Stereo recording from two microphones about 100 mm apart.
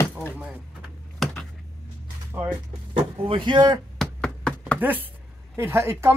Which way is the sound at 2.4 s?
55° right (ahead or behind).